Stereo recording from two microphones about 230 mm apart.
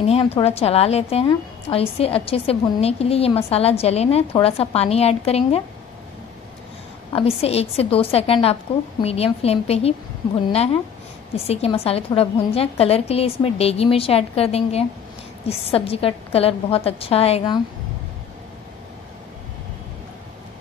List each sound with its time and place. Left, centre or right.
0.0 s a woman's voice: left
7.1 s a woman's voice: left